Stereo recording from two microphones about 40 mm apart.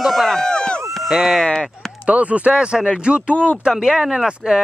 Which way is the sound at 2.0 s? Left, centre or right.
Right.